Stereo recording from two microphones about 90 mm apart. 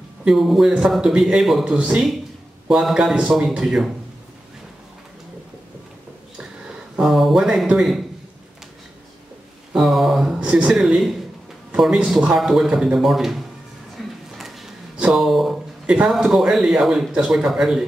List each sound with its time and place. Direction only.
0.2 s a man's voice: 5° right (ahead or behind)
7.0 s speech: centre (ahead or behind)
9.7 s speech: 5° right (ahead or behind)
10.4 s a man's voice: 15° right (ahead or behind)
10.7 s speech: centre (ahead or behind)
14.0 s a sound: centre (ahead or behind)
15.0 s speech: 5° right (ahead or behind)